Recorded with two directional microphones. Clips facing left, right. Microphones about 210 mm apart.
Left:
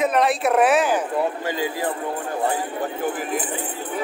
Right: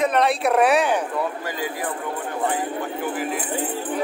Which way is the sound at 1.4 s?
25° left (ahead or behind).